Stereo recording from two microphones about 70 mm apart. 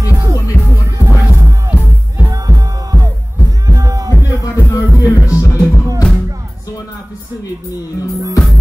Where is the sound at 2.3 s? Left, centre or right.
Right.